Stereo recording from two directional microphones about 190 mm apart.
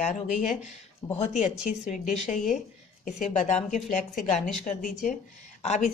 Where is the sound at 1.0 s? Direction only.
25° left (ahead or behind).